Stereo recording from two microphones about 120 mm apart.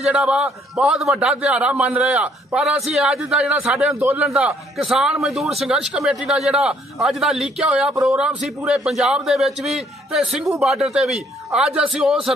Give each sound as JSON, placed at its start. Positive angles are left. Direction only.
{"t": 0.0, "sound": "a man's voice", "side_deg": -5}
{"t": 4.3, "sound": "a man's voice", "side_deg": -5}